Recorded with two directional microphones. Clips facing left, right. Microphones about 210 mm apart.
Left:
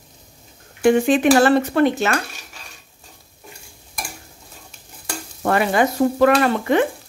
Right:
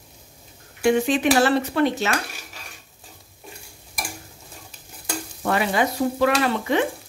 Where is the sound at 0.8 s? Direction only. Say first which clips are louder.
Left 4 dB; 50° left (ahead or behind).